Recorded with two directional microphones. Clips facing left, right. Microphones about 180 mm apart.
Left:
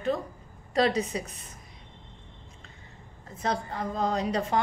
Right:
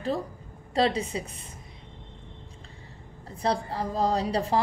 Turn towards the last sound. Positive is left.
turn(degrees=-35)  # may be behind; listen again after turning